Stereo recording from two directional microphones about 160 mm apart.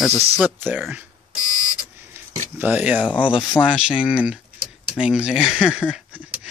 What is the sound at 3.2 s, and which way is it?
Speech, 30° left (ahead or behind).